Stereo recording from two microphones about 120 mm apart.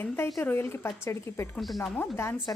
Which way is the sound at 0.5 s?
20° left (ahead or behind).